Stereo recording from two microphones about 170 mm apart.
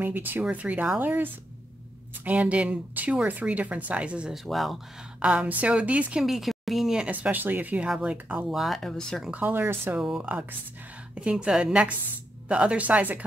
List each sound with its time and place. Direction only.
0.0 s a woman's voice: 10° right (ahead or behind)
9.3 s a woman's voice: 10° right (ahead or behind)